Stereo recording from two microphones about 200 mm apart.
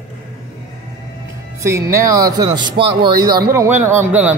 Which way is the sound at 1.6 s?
15° right (ahead or behind).